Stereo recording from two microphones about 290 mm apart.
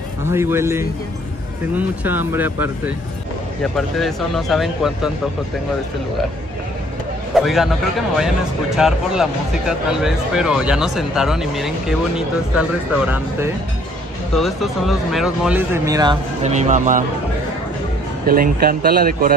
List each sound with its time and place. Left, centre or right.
0.2 s speech: centre
3.7 s speech: centre
7.3 s speech: centre; by 17.0 s right
18.2 s speech: right